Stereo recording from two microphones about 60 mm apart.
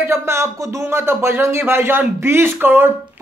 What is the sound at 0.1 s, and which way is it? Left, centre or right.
Speech, right.